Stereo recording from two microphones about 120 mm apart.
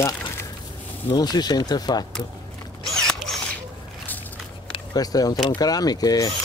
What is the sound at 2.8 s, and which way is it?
Mechanisms, 5° left (ahead or behind).